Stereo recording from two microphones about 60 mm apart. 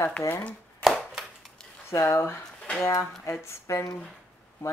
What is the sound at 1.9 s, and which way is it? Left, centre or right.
Speech, left.